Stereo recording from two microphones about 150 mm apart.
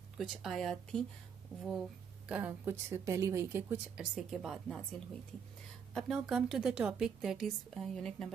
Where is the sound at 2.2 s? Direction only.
10° right (ahead or behind).